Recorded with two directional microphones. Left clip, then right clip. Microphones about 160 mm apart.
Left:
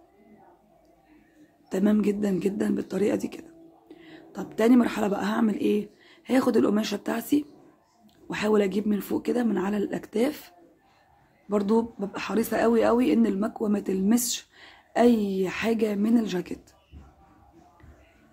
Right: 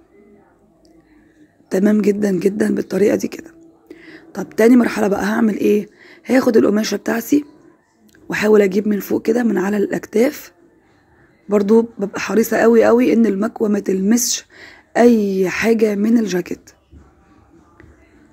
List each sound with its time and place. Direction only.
1.7 s speech: 35° right (ahead or behind)